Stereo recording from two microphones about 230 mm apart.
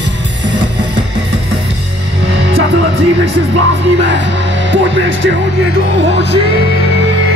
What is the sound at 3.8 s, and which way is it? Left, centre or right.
Speech, right.